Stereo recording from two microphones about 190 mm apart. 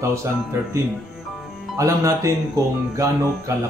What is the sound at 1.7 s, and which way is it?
A man's voice, 15° right (ahead or behind).